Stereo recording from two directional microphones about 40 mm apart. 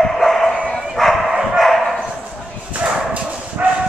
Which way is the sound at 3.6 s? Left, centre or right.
Right.